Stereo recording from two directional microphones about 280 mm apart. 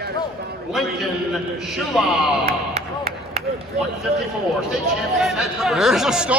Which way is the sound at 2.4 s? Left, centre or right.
Right.